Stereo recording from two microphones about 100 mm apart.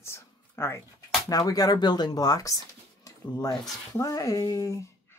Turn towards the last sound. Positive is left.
turn(degrees=30)  # may be behind; listen again after turning